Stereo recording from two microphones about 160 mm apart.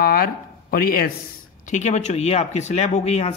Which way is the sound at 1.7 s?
45° left (ahead or behind).